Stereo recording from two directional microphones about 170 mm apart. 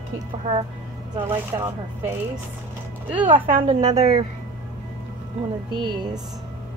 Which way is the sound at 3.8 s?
40° right (ahead or behind).